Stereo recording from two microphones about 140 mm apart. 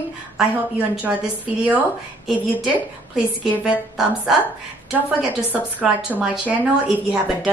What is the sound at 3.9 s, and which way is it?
Speech, centre (ahead or behind).